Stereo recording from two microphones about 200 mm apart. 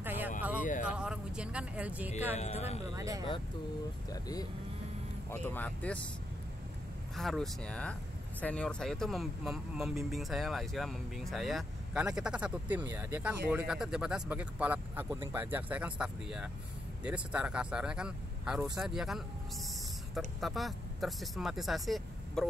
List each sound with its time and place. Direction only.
0.0 s a sound: 10° right (ahead or behind)
0.8 s speech: 5° right (ahead or behind)
2.3 s speech: 35° left (ahead or behind)
3.0 s speech: 15° right (ahead or behind)
4.1 s speech: 20° left (ahead or behind)
7.2 s speech: centre (ahead or behind)